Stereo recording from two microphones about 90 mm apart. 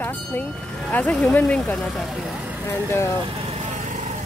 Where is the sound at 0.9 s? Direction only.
15° left (ahead or behind).